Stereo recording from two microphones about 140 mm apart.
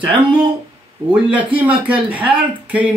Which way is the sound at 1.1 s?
10° right (ahead or behind).